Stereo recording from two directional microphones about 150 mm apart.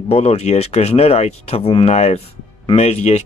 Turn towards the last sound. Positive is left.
turn(degrees=45)  # may be behind; listen again after turning